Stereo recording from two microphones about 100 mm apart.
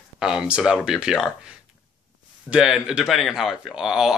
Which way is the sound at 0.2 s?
5° right (ahead or behind).